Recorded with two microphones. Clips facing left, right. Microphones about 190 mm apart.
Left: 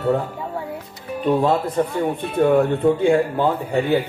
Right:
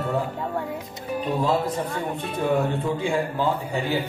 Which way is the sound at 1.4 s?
60° left (ahead or behind).